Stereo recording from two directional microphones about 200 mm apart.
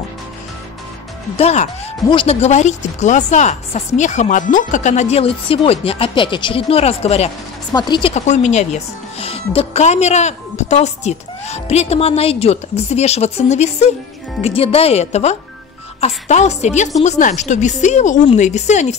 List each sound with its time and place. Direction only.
1.3 s speech: 30° left (ahead or behind)
8.1 s speech: 35° left (ahead or behind)